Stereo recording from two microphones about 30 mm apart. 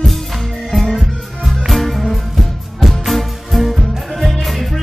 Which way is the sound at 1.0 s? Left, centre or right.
Centre.